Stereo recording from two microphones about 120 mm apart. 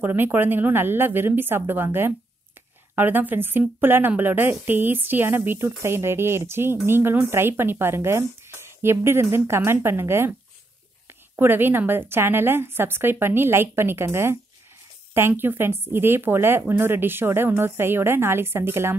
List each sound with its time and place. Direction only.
0.0 s a woman's voice: 15° right (ahead or behind)